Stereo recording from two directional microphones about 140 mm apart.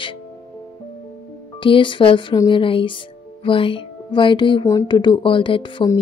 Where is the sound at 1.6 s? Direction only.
35° left (ahead or behind).